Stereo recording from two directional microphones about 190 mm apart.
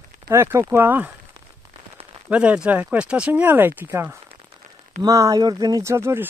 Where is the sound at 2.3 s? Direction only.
5° right (ahead or behind).